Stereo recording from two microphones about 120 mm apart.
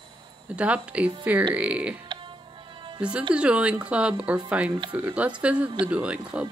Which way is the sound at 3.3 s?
10° right (ahead or behind).